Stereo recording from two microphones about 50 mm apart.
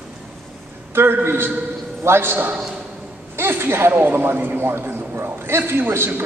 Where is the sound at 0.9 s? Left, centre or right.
Right.